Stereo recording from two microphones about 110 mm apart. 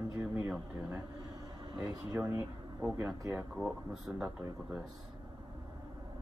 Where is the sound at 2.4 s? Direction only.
15° right (ahead or behind).